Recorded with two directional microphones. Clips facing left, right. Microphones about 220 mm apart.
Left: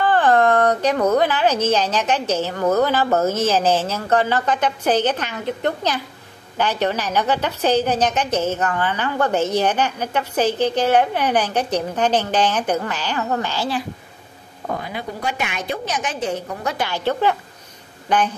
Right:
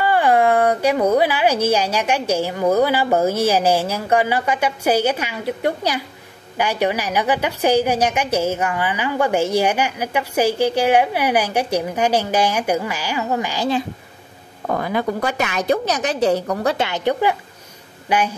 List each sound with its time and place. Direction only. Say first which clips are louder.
0.0 s a woman's voice: even; 10° right (ahead or behind)
14.8 s a woman's voice: right 7 dB; 45° right (ahead or behind)
16.6 s a woman's voice: even; 25° right (ahead or behind); by 18.3 s 10° right (ahead or behind)